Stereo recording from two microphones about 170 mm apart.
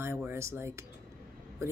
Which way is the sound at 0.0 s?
15° right (ahead or behind).